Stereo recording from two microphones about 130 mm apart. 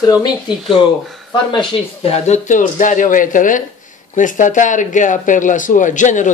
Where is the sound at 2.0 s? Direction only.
60° left (ahead or behind); by 3.6 s 90° left.